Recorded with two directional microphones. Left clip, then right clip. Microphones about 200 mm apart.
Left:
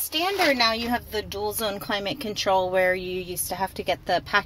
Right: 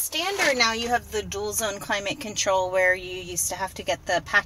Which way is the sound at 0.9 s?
30° left (ahead or behind).